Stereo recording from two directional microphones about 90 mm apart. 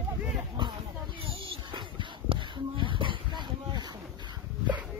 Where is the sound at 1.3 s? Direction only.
65° right (ahead or behind).